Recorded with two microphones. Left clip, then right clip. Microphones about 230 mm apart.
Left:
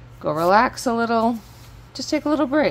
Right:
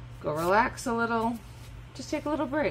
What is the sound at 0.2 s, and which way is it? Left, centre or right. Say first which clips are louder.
Speech: left 8 dB; left.